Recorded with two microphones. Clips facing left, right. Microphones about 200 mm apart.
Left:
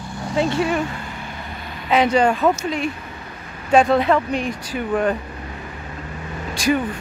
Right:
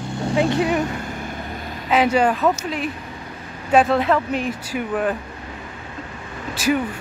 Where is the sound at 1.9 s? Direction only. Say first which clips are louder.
Left 1 dB; 5° right (ahead or behind).